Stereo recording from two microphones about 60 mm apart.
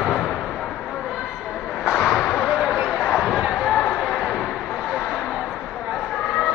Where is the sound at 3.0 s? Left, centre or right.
Centre.